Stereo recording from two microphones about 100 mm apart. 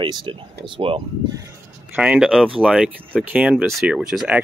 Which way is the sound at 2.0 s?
10° right (ahead or behind).